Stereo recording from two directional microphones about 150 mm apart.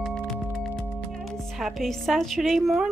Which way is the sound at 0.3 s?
Centre (ahead or behind).